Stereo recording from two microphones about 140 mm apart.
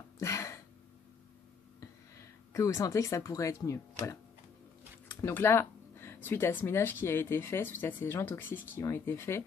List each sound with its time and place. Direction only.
0.2 s throat clearing: 20° left (ahead or behind)
2.1 s speech: 20° left (ahead or behind)
5.2 s speech: 15° left (ahead or behind)